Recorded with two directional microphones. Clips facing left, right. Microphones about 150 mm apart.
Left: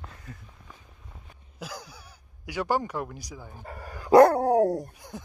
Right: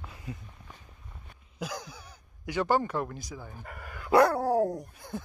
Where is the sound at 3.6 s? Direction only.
30° left (ahead or behind).